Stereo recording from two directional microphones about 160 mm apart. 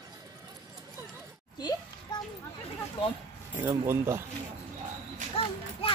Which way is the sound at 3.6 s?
15° right (ahead or behind).